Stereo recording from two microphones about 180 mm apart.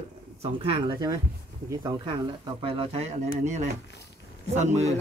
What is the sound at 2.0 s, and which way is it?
Speech, 30° right (ahead or behind).